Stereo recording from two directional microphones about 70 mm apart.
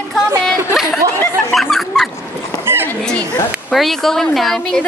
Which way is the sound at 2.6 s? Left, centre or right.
Right.